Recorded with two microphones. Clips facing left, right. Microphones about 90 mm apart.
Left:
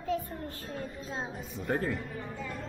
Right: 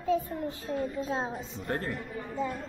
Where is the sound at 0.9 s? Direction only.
35° right (ahead or behind).